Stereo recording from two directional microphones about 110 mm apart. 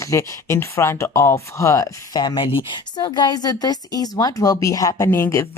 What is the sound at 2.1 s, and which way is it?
Speech, 40° left (ahead or behind).